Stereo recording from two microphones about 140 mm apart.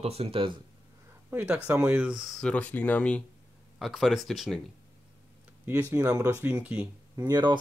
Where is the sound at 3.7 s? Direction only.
Centre (ahead or behind).